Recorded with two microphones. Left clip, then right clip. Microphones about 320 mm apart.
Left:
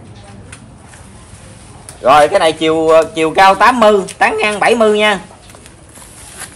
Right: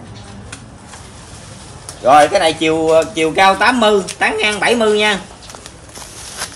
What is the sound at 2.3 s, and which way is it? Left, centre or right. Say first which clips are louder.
Speech: left 2 dB; centre.